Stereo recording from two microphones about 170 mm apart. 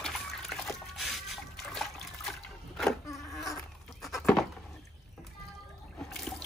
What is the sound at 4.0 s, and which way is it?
Goat, centre (ahead or behind).